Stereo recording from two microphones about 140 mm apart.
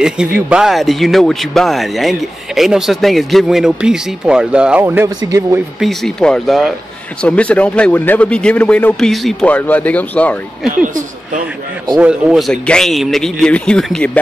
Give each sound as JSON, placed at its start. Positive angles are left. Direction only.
{"t": 0.0, "sound": "a man's voice", "side_deg": -5}
{"t": 4.8, "sound": "speech", "side_deg": -20}
{"t": 5.8, "sound": "a man's voice", "side_deg": 0}
{"t": 12.0, "sound": "a man's voice", "side_deg": -5}